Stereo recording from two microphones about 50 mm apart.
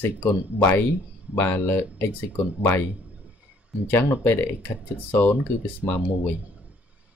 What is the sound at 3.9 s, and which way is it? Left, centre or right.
Speech, left.